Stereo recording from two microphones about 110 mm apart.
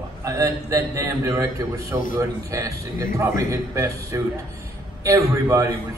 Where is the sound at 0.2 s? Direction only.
30° right (ahead or behind).